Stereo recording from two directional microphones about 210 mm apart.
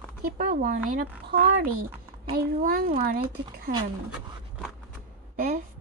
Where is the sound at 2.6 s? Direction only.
45° right (ahead or behind).